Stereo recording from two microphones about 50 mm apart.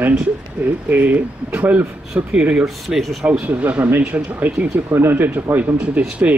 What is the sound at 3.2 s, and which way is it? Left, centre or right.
Speech, right.